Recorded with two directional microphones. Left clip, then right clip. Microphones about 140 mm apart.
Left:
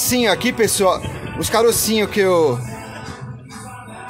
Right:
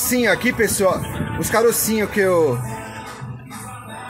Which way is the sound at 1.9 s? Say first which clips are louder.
Left 2 dB; 20° left (ahead or behind).